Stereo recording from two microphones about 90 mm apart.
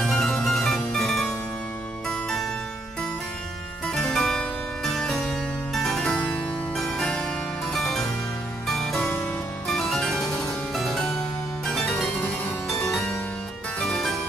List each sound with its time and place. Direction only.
0.0 s music: 5° left (ahead or behind)
3.8 s music: 5° left (ahead or behind)
6.7 s harpsichord: 5° left (ahead or behind)
8.6 s music: centre (ahead or behind)
9.0 s music: 30° left (ahead or behind)
9.7 s harpsichord: 5° left (ahead or behind)
10.7 s music: centre (ahead or behind)
11.6 s harpsichord: 5° left (ahead or behind)
12.6 s music: 5° left (ahead or behind)
13.7 s harpsichord: 5° left (ahead or behind)